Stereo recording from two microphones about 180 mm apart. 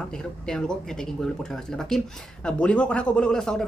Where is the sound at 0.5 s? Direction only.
5° left (ahead or behind).